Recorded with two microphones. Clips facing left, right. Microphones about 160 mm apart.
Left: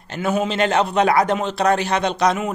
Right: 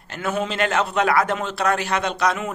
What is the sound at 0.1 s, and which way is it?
A man's voice, 15° left (ahead or behind).